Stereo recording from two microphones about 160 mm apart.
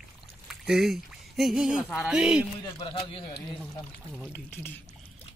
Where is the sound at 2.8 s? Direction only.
35° left (ahead or behind).